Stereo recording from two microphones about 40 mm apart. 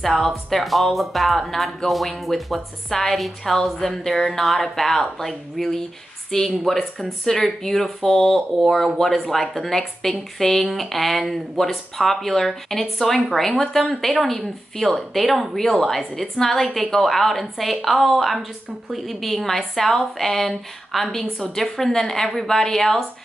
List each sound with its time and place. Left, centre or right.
0.0 s speech: centre
6.3 s speech: centre
8.5 s speech: centre